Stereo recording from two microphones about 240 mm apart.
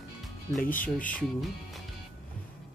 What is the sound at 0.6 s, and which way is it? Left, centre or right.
Speech, left.